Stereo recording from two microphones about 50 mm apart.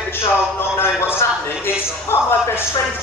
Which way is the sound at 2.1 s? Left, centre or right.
Left.